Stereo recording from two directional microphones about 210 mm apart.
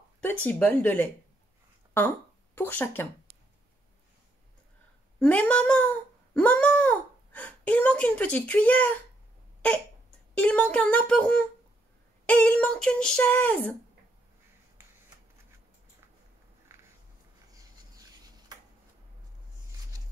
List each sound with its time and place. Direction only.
0.2 s speech: 10° left (ahead or behind)
5.2 s speech: 5° left (ahead or behind)
10.3 s speech: 5° left (ahead or behind)
16.7 s a sound: 10° right (ahead or behind)